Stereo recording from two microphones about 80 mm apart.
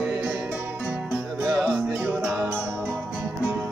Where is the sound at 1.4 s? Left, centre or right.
Centre.